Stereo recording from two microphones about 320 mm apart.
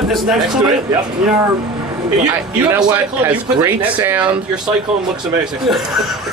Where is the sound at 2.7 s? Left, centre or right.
Centre.